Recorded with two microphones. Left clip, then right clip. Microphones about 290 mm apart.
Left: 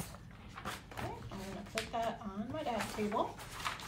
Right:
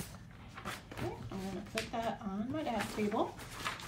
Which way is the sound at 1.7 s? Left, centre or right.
Centre.